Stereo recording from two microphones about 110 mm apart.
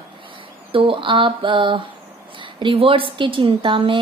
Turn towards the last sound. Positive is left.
turn(degrees=-50)  # may be behind; listen again after turning